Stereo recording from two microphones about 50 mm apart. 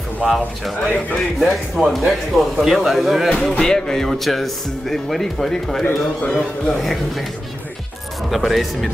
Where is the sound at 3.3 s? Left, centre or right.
Centre.